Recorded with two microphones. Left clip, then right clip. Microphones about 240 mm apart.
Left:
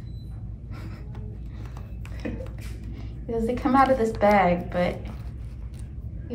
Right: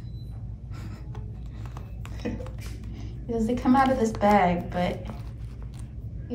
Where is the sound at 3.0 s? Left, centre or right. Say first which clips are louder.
Left 1 dB; centre.